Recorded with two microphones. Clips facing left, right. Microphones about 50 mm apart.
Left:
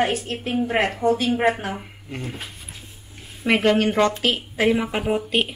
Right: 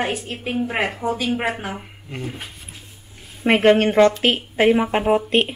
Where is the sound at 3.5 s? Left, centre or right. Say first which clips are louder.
Right 4 dB; right.